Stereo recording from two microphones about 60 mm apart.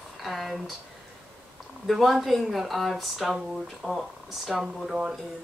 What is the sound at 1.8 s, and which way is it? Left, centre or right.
Speech, centre.